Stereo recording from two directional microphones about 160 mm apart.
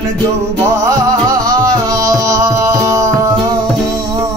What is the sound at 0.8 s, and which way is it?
Music, 20° right (ahead or behind).